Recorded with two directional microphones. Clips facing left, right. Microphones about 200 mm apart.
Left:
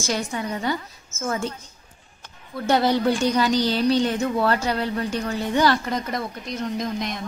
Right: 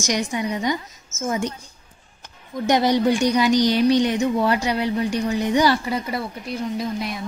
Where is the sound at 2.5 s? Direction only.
15° right (ahead or behind).